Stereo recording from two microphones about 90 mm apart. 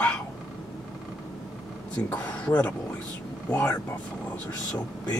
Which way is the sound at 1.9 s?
15° left (ahead or behind).